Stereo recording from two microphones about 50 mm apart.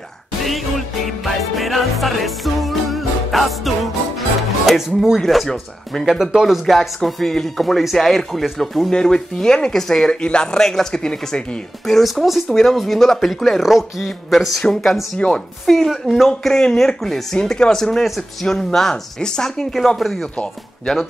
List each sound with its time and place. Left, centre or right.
0.4 s music: centre
5.2 s speech: centre
6.0 s speech: centre
8.9 s speech: centre
11.8 s speech: centre
14.6 s speech: centre
15.1 s a woman's voice: left
15.6 s speech: centre
15.9 s speech: centre
16.3 s speech: centre
20.3 s speech: centre